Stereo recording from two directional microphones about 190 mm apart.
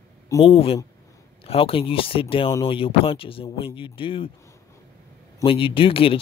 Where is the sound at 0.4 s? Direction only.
30° left (ahead or behind).